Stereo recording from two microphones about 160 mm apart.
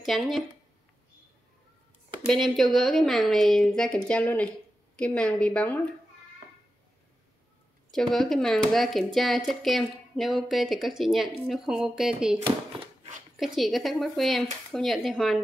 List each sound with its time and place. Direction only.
0.0 s speech: centre (ahead or behind)
2.2 s a woman's voice: centre (ahead or behind)
7.9 s speech: centre (ahead or behind)
12.4 s a sound: 35° right (ahead or behind)
13.4 s speech: centre (ahead or behind)